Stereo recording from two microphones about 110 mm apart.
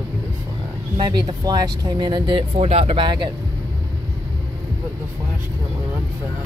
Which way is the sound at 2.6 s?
65° right (ahead or behind).